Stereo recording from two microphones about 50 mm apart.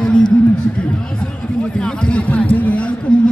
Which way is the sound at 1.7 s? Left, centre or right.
Centre.